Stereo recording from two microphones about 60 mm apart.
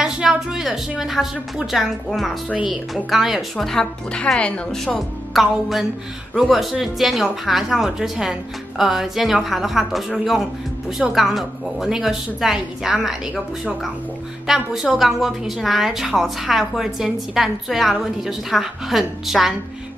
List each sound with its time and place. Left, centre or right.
0.0 s a woman's voice: centre
3.5 s speech: centre
4.4 s a woman's voice: left
4.9 s a woman's voice: centre